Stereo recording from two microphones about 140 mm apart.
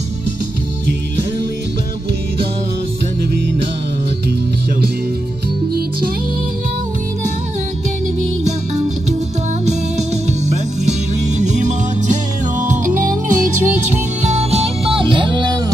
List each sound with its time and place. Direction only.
10.5 s music: 55° right (ahead or behind); by 15.5 s 35° right (ahead or behind)